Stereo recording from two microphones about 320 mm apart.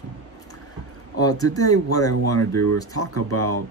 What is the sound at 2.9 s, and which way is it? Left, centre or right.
Speech, left.